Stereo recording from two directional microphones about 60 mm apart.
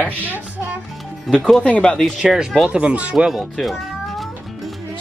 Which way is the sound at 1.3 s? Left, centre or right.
Centre.